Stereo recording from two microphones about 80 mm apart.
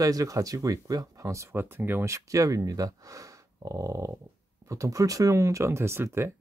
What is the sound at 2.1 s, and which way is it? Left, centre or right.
Speech, right.